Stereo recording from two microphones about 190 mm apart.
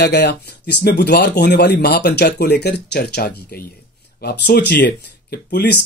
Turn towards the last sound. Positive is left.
turn(degrees=55)  # may be behind; listen again after turning